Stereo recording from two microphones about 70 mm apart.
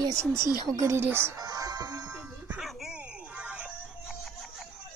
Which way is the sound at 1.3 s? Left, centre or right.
Right.